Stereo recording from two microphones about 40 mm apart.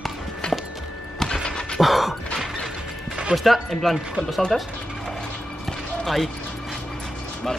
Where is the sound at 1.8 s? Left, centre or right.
Centre.